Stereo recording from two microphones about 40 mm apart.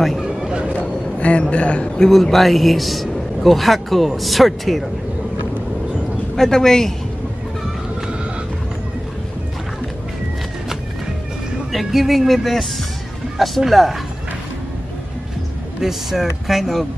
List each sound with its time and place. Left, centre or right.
0.2 s a sound: centre
0.5 s vehicle: right
0.7 s a sound: left
1.5 s a man's voice: left
2.0 s a man's voice: centre
6.3 s speech: centre
11.7 s a man's voice: centre
15.8 s a man's voice: centre